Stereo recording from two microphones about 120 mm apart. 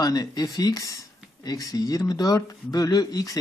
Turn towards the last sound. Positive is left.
turn(degrees=30)  # may be behind; listen again after turning